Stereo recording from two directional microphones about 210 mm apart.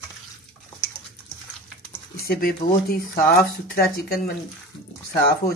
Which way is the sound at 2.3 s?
45° left (ahead or behind).